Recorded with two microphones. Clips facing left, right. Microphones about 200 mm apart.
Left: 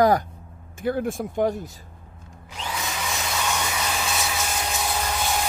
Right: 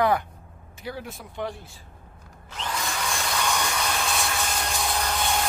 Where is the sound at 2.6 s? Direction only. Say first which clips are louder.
Even; 5° left (ahead or behind).